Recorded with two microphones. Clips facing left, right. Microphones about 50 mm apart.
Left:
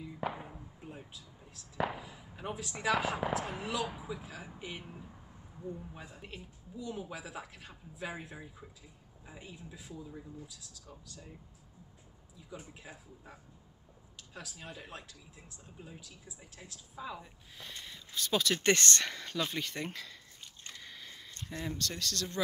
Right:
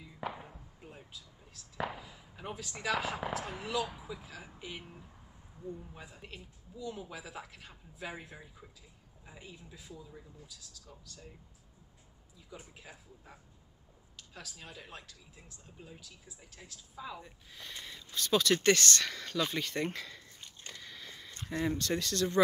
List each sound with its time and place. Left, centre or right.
0.2 s a sound: centre
2.9 s speech: centre
9.8 s speech: centre
12.9 s speech: centre
18.6 s speech: left
19.0 s speech: centre
20.8 s a sound: centre
21.5 s speech: centre